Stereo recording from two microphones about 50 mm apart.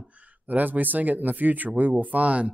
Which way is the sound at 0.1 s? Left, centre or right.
Right.